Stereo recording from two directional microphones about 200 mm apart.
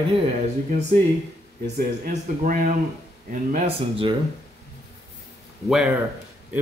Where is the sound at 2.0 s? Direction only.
40° right (ahead or behind).